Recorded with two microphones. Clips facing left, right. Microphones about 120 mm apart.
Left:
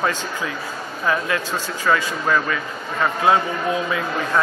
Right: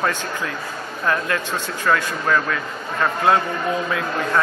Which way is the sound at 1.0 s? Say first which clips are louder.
Even; centre (ahead or behind).